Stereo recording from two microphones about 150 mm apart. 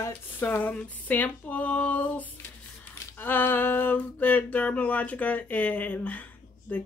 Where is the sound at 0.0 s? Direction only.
15° left (ahead or behind).